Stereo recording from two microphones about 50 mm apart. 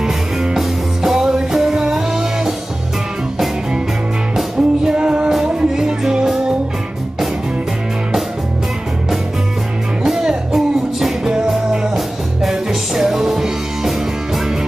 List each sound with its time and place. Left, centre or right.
0.0 s music: centre
4.6 s music: centre
5.8 s music: centre
10.0 s music: centre